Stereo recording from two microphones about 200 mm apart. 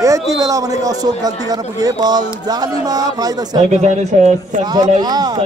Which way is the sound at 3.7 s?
35° right (ahead or behind).